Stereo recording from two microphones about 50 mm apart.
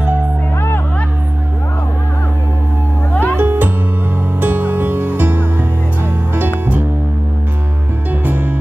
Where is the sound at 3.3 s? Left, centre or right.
Right.